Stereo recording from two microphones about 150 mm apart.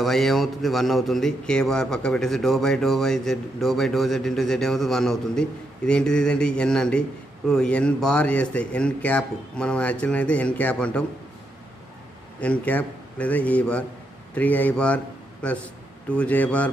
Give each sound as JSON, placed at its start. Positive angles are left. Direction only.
{"t": 0.0, "sound": "a man's voice", "side_deg": 0}
{"t": 12.4, "sound": "speech", "side_deg": 10}